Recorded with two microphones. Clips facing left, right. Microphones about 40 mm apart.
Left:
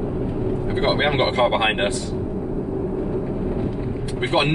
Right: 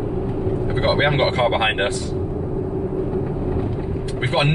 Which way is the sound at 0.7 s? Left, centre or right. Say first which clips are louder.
Right 1 dB; centre.